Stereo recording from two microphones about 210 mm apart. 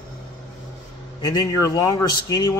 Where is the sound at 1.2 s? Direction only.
20° left (ahead or behind).